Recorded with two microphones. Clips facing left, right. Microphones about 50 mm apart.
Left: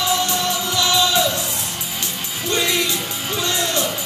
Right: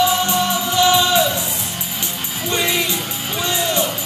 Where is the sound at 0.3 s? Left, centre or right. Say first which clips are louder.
Right 3 dB; right.